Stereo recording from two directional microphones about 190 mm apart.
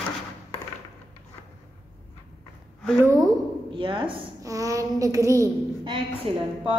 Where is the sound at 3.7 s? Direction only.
25° right (ahead or behind).